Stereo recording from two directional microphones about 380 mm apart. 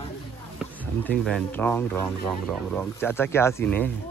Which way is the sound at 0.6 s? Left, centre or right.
Centre.